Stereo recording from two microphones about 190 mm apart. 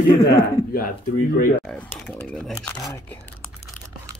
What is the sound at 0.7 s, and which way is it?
Speech, 50° left (ahead or behind).